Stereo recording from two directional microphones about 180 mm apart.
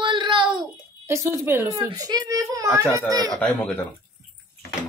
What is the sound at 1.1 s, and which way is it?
A woman's voice, 15° right (ahead or behind).